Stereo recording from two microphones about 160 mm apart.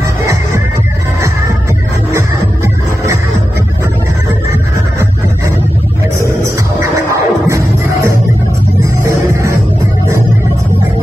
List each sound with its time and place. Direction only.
6.8 s music: 15° right (ahead or behind)